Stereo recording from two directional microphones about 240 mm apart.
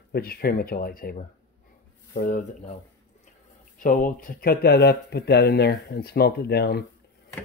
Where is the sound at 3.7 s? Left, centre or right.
Left.